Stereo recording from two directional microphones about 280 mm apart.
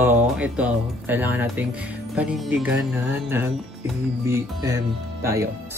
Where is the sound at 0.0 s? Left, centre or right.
Centre.